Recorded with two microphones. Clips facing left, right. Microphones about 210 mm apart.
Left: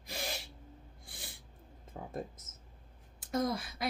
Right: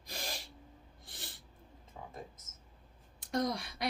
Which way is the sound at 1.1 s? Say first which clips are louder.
Even; 10° left (ahead or behind).